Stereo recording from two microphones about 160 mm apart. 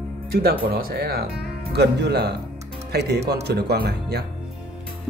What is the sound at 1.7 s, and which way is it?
Speech, 90° right.